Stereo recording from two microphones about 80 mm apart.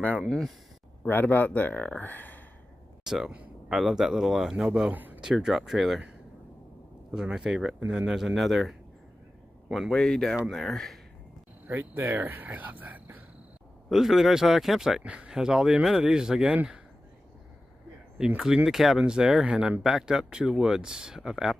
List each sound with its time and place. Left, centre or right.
0.2 s speech: centre
1.0 s speech: left
3.0 s a man's voice: centre
4.9 s a sound: right
5.2 s a man's voice: centre
7.1 s speech: centre
8.2 s a man's voice: centre
11.6 s speech: right
13.8 s speech: centre
18.1 s speech: centre